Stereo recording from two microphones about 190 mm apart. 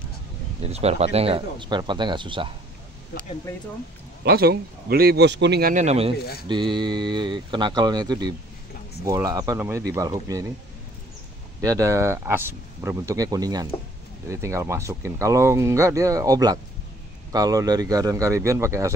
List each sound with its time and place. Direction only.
0.6 s speech: 35° right (ahead or behind)
4.2 s speech: 55° right (ahead or behind); by 6.1 s 35° right (ahead or behind)
6.1 s speech: 55° left (ahead or behind)
6.4 s speech: 25° right (ahead or behind)
11.6 s speech: 15° right (ahead or behind)